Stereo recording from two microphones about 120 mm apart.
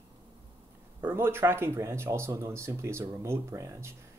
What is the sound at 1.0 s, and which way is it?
Speech, 20° right (ahead or behind).